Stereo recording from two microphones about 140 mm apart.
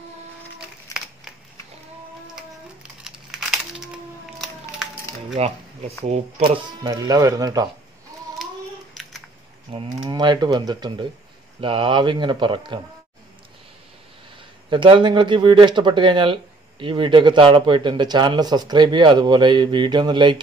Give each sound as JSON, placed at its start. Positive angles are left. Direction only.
{"t": 2.3, "sound": "a sound", "side_deg": -5}
{"t": 5.4, "sound": "speech", "side_deg": -50}
{"t": 6.9, "sound": "speech", "side_deg": -25}
{"t": 9.7, "sound": "speech", "side_deg": -40}
{"t": 10.0, "sound": "speech", "side_deg": -30}
{"t": 14.7, "sound": "speech", "side_deg": -35}